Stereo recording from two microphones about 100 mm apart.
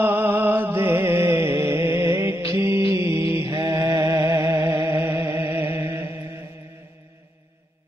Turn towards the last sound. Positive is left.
turn(degrees=-25)  # may be behind; listen again after turning